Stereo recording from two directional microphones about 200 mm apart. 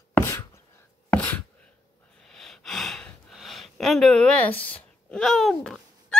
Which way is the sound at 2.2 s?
Centre (ahead or behind).